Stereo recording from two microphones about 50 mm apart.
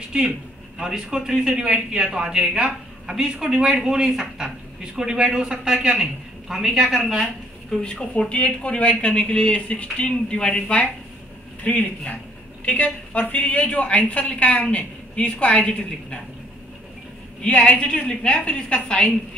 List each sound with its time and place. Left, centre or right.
0.7 s a man's voice: centre
7.8 s a woman's voice: centre
12.6 s a woman's voice: left
17.4 s a woman's voice: left